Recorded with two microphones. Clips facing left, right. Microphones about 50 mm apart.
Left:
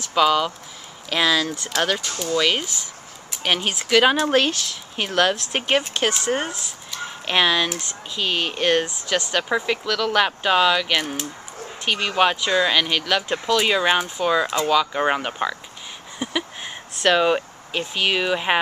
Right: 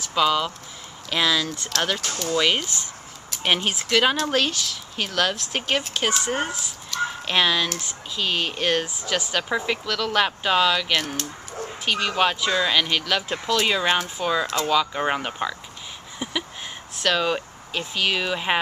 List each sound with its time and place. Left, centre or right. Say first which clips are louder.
0.0 s speech: left 3 dB; centre
5.9 s speech: left 2 dB; centre
8.8 s speech: left 2 dB; centre
17.0 s speech: left 5 dB; centre